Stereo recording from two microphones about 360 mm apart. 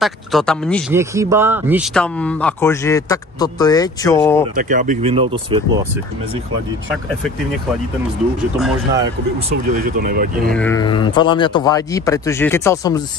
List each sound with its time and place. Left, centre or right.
0.0 s speech: centre
4.6 s speech: right
9.8 s speech: right
10.5 s speech: centre